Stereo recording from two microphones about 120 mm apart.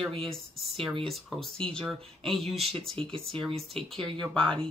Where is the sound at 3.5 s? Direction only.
55° right (ahead or behind).